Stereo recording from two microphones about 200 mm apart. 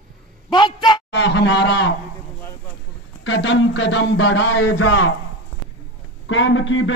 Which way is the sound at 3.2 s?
70° left (ahead or behind).